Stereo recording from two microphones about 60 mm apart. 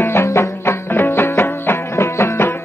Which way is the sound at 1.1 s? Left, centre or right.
Left.